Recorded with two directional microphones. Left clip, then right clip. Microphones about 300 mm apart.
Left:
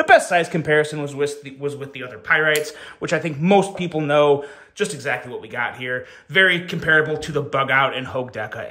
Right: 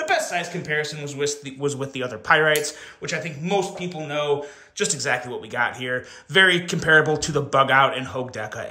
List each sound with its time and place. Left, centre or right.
0.1 s speech: centre
1.1 s speech: centre
3.0 s speech: centre
4.7 s speech: centre